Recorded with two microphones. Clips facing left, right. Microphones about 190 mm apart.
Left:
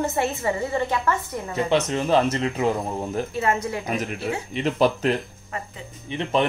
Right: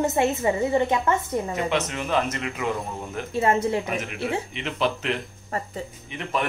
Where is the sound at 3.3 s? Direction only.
30° right (ahead or behind).